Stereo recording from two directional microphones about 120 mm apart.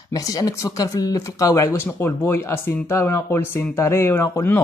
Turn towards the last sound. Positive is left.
turn(degrees=15)  # may be behind; listen again after turning